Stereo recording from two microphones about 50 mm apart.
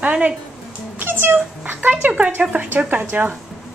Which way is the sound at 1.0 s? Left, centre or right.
Right.